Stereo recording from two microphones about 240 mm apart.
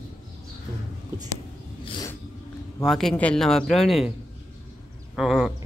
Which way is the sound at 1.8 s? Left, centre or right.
Centre.